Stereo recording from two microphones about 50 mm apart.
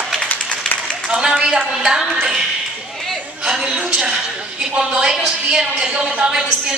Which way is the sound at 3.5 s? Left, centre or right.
Centre.